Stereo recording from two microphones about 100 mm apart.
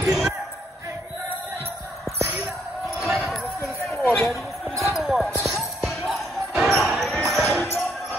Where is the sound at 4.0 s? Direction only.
25° left (ahead or behind).